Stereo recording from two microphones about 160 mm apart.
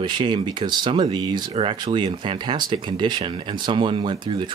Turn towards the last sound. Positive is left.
turn(degrees=-30)  # may be behind; listen again after turning